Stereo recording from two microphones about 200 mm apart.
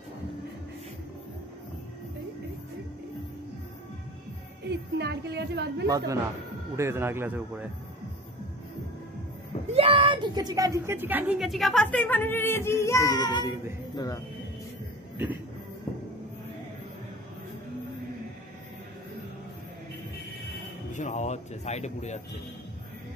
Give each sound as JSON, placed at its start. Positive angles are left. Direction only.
{"t": 4.6, "sound": "a woman's voice", "side_deg": -60}
{"t": 5.9, "sound": "speech", "side_deg": -15}
{"t": 9.8, "sound": "a woman's voice", "side_deg": -25}
{"t": 20.9, "sound": "speech", "side_deg": 40}